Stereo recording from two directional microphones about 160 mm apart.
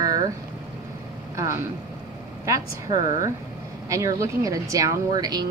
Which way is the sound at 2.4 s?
20° right (ahead or behind).